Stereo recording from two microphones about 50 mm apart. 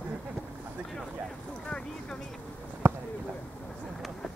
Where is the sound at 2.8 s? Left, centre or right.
Right.